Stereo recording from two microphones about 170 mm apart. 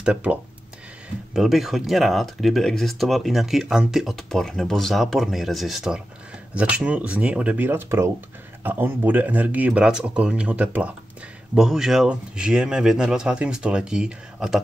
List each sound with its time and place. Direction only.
0.0 s speech: 5° right (ahead or behind)